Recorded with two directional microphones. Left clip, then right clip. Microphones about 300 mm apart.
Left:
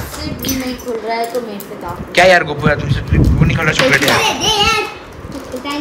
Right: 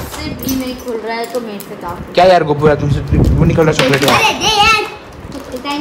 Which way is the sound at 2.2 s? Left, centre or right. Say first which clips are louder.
Right 1 dB; centre.